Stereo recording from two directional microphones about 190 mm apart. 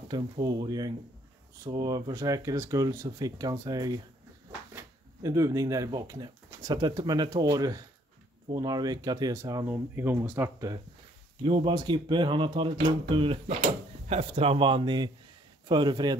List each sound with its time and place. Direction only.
0.1 s speech: 20° right (ahead or behind)
11.4 s speech: 25° right (ahead or behind)